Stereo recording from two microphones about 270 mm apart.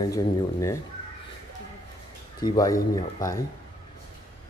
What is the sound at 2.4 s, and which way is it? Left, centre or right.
Speech, centre.